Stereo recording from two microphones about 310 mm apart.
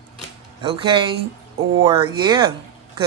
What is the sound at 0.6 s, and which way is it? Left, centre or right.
Speech, centre.